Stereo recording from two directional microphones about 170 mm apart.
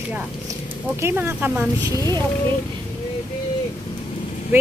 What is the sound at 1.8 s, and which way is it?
Speech, 15° left (ahead or behind).